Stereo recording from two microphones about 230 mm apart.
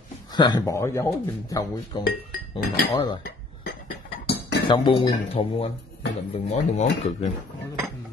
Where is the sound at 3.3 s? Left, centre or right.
Left.